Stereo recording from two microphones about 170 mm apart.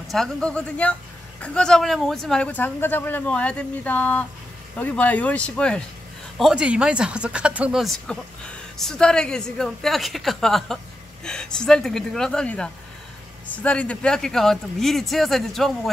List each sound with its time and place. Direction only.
0.1 s speech: 5° left (ahead or behind)